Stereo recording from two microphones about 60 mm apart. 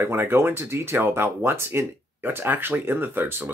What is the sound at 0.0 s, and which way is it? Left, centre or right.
Speech, right.